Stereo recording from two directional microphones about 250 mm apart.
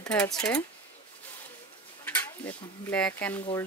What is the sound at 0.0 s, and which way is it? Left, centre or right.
Speech, centre.